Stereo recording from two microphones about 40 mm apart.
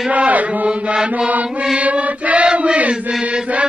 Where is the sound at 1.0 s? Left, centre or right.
Right.